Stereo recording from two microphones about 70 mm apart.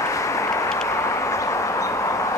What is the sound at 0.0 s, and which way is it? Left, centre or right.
Vehicle, left.